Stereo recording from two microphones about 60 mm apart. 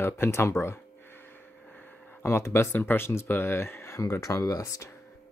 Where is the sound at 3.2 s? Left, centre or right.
Left.